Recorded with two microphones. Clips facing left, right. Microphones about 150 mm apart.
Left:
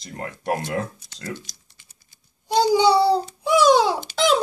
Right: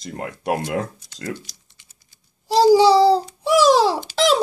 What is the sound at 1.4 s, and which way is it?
Typing, 45° left (ahead or behind).